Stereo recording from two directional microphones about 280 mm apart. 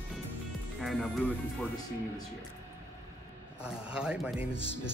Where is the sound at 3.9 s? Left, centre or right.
Centre.